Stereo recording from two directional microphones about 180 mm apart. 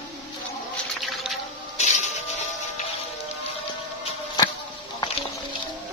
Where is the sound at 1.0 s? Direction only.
Centre (ahead or behind).